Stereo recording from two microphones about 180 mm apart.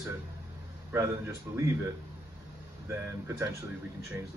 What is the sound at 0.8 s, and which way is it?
A man's voice, 15° right (ahead or behind).